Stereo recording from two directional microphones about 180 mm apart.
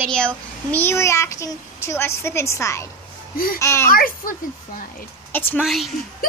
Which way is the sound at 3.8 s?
55° left (ahead or behind).